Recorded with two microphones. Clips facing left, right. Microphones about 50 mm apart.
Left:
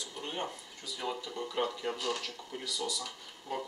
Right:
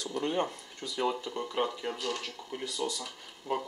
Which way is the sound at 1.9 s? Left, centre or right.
Centre.